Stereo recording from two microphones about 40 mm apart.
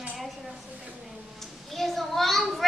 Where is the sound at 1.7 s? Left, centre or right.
Centre.